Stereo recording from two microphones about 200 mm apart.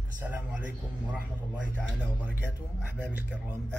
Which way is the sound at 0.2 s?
5° right (ahead or behind).